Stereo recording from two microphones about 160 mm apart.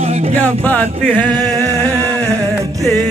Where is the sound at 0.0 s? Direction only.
40° right (ahead or behind).